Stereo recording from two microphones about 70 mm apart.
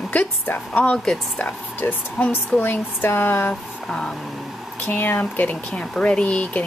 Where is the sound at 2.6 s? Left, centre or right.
Left.